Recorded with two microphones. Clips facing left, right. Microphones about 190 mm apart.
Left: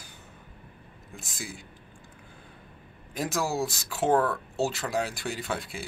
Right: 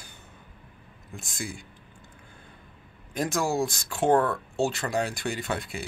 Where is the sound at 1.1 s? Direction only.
5° left (ahead or behind).